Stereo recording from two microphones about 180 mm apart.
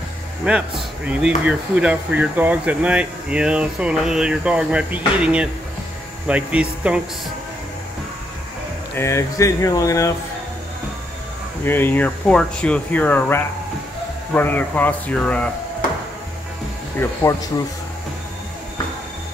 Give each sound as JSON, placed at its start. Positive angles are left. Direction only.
{"t": 0.5, "sound": "speech", "side_deg": -5}
{"t": 8.9, "sound": "speech", "side_deg": 15}
{"t": 11.6, "sound": "speech", "side_deg": 10}